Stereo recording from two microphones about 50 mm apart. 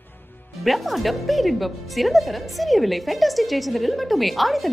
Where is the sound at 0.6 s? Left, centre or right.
Centre.